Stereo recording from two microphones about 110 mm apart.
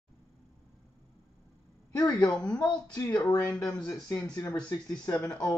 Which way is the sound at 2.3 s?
10° left (ahead or behind).